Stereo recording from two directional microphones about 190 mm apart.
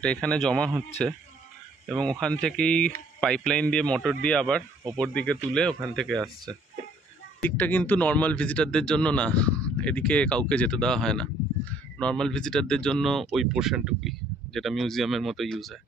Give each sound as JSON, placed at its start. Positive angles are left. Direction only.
{"t": 0.0, "sound": "a man's voice", "side_deg": 5}
{"t": 6.1, "sound": "speech", "side_deg": -20}
{"t": 7.4, "sound": "a man's voice", "side_deg": 10}